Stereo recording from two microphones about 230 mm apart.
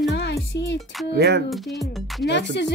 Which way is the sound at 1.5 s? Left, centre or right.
Centre.